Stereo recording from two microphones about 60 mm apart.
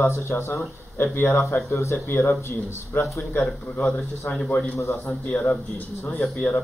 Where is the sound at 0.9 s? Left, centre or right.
Left.